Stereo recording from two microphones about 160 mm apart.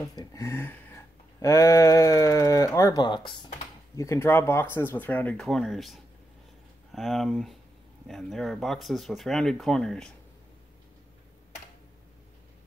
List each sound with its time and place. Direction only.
0.0 s speech: 20° left (ahead or behind)
3.9 s speech: 15° left (ahead or behind)